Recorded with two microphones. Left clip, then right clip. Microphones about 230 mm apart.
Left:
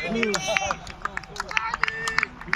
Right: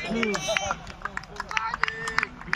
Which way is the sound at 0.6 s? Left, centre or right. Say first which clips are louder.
Left 3 dB; centre.